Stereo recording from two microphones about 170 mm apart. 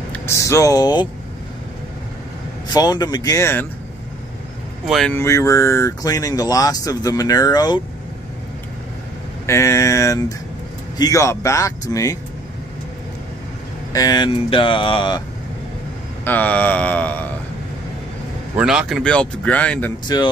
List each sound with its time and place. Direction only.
0.1 s speech: 15° left (ahead or behind)
2.7 s speech: 25° left (ahead or behind)
4.8 s speech: centre (ahead or behind)
5.1 s speech: 15° left (ahead or behind)
9.5 s a sound: 15° left (ahead or behind)
11.9 s speech: 20° left (ahead or behind)
13.9 s speech: 25° left (ahead or behind)
16.3 s a sound: 10° left (ahead or behind)
18.6 s speech: 5° right (ahead or behind)
20.1 s speech: 25° left (ahead or behind)